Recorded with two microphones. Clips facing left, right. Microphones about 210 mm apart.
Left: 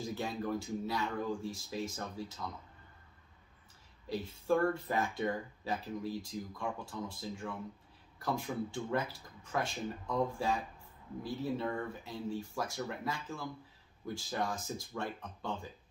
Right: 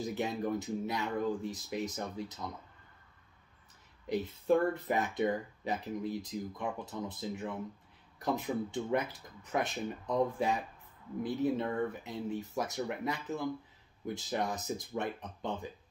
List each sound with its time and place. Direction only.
0.0 s speech: 20° right (ahead or behind)
4.1 s speech: 20° right (ahead or behind)